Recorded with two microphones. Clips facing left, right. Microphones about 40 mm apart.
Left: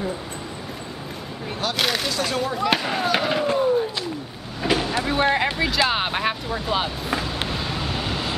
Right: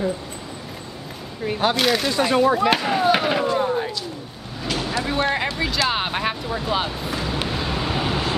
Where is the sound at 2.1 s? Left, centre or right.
Centre.